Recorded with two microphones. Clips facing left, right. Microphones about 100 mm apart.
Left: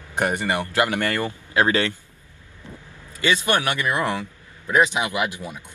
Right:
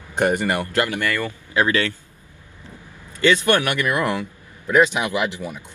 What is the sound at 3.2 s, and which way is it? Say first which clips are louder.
Speech: right 4 dB; 15° left (ahead or behind).